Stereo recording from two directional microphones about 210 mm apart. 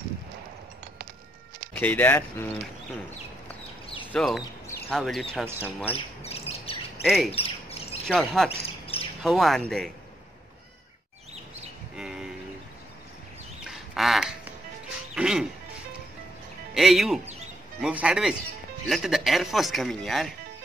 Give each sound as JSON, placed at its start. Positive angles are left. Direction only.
{"t": 1.8, "sound": "speech", "side_deg": 10}
{"t": 4.1, "sound": "speech", "side_deg": 0}
{"t": 4.6, "sound": "bird", "side_deg": 10}
{"t": 4.9, "sound": "speech", "side_deg": 0}
{"t": 5.9, "sound": "bird", "side_deg": 30}
{"t": 7.1, "sound": "speech", "side_deg": 0}
{"t": 7.3, "sound": "chirp", "side_deg": 25}
{"t": 8.1, "sound": "speech", "side_deg": 0}
{"t": 8.5, "sound": "bird", "side_deg": 25}
{"t": 9.2, "sound": "speech", "side_deg": 0}
{"t": 12.0, "sound": "a sound", "side_deg": -5}
{"t": 13.7, "sound": "duck", "side_deg": 0}
{"t": 15.1, "sound": "speech", "side_deg": -5}
{"t": 16.7, "sound": "speech", "side_deg": 0}